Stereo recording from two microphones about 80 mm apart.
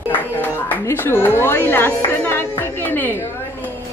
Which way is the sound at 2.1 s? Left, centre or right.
Left.